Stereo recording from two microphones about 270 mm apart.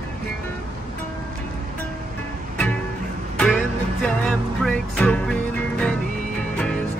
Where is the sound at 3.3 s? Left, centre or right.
Centre.